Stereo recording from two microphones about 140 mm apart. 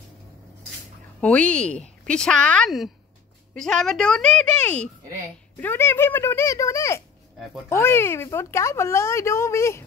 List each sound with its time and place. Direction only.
1.2 s a woman's voice: 10° left (ahead or behind)